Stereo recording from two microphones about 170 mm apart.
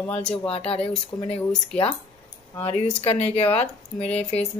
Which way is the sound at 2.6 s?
35° left (ahead or behind).